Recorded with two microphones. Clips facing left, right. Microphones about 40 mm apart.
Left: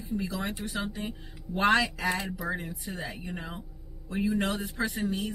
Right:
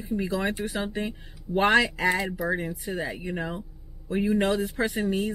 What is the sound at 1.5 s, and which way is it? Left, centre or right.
Speech, right.